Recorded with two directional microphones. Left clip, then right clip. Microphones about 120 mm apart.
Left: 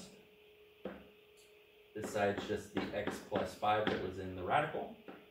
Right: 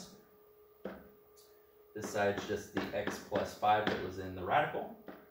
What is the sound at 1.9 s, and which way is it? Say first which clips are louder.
Speech: right 2 dB; 5° right (ahead or behind).